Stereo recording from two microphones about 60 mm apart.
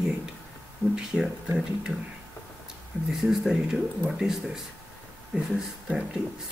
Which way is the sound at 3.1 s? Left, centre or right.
Centre.